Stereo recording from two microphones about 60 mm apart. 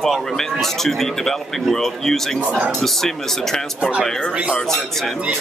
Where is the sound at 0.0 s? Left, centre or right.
Centre.